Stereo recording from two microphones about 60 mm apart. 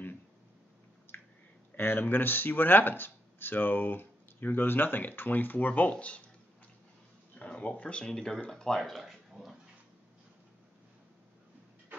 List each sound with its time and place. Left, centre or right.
1.1 s squish: left
1.8 s speech: left
7.3 s speech: left; by 9.2 s centre
9.3 s a sound: centre